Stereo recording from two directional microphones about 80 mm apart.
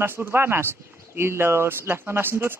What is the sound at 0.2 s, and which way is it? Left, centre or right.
Speech, right.